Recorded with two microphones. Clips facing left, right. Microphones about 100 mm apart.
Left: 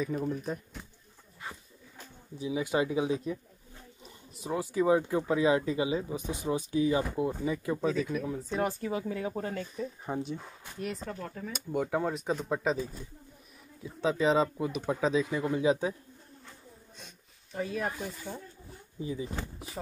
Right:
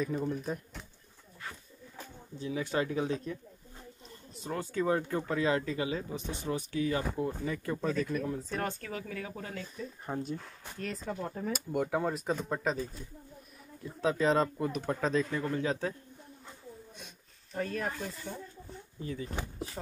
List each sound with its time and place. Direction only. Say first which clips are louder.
0.0 s speech: left 1 dB; centre (ahead or behind)
2.3 s speech: left 3 dB; 15° left (ahead or behind); by 9.8 s 35° left (ahead or behind)
10.0 s speech: right 1 dB; 5° left (ahead or behind)
11.5 s speech: left 2 dB; centre (ahead or behind)
17.0 s speech: right 1 dB; centre (ahead or behind)